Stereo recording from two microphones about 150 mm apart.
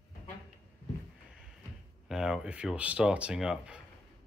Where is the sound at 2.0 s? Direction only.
5° right (ahead or behind).